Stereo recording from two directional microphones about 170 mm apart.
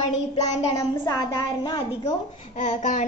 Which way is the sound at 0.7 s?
20° left (ahead or behind).